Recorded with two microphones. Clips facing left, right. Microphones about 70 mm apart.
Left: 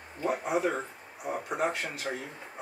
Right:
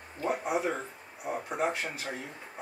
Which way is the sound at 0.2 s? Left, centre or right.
Centre.